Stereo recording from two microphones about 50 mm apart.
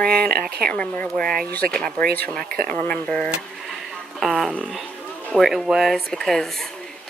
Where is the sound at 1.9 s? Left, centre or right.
Left.